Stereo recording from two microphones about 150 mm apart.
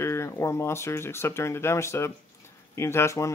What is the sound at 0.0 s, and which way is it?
Speech, 20° left (ahead or behind).